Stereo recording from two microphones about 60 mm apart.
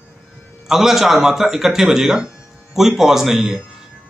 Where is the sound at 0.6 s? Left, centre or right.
Centre.